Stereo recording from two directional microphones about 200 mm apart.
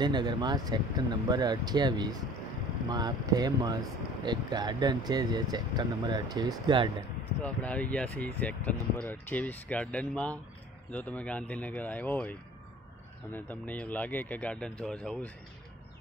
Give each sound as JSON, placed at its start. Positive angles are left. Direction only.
{"t": 0.0, "sound": "speech", "side_deg": -20}
{"t": 7.4, "sound": "speech", "side_deg": 5}